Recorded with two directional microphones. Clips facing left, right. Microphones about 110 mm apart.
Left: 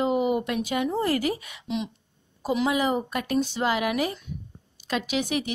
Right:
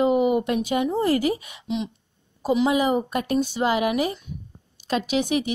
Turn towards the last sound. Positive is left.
turn(degrees=-25)  # may be behind; listen again after turning